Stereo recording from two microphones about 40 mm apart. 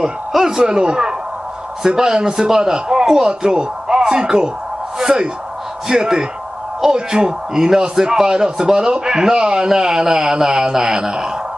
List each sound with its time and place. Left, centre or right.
0.0 s a man's voice: centre